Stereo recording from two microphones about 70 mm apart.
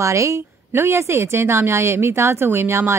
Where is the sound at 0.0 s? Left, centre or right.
Right.